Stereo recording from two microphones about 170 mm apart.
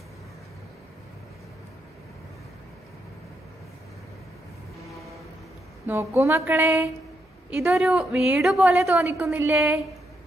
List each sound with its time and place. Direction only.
5.9 s a woman's voice: 15° right (ahead or behind)